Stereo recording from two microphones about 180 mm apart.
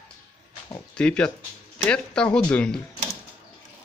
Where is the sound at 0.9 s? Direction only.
5° left (ahead or behind).